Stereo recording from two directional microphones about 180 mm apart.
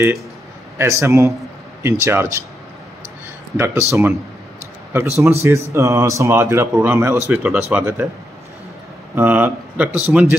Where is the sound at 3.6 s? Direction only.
15° right (ahead or behind).